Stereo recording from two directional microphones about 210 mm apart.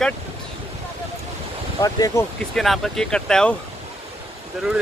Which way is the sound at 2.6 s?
Centre (ahead or behind).